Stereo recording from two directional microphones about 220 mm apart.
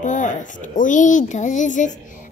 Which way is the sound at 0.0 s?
35° left (ahead or behind).